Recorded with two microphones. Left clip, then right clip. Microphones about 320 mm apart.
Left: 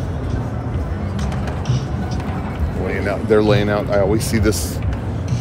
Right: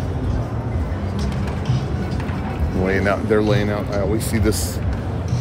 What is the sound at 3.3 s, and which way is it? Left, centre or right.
Speech, centre.